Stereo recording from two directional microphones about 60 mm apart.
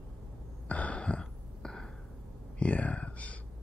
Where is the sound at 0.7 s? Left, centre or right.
Left.